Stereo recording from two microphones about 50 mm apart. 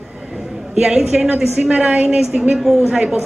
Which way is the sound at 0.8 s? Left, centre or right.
Centre.